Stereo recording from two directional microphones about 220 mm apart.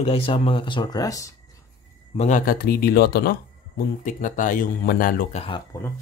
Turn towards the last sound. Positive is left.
turn(degrees=20)  # may be behind; listen again after turning